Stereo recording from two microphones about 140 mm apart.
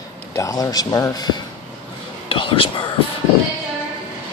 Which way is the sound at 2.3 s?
40° left (ahead or behind).